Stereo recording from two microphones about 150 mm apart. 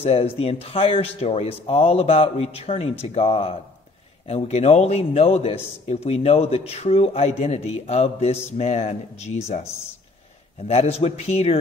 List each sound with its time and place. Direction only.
0.0 s a man's voice: 40° left (ahead or behind)
10.6 s a man's voice: 45° left (ahead or behind)